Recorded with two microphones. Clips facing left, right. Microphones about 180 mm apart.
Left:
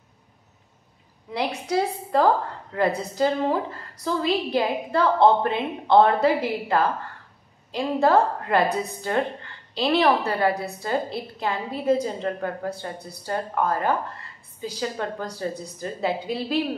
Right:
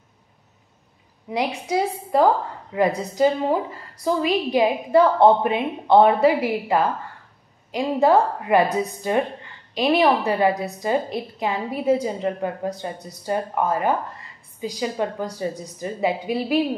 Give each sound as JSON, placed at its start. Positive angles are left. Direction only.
{"t": 1.3, "sound": "a woman's voice", "side_deg": -15}
{"t": 9.8, "sound": "a woman's voice", "side_deg": -15}